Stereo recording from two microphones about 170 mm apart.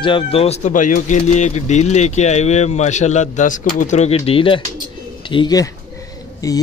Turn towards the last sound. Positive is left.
turn(degrees=20)  # may be behind; listen again after turning